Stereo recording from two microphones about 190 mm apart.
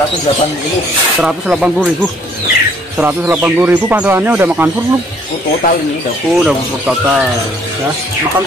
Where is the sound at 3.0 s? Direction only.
10° right (ahead or behind).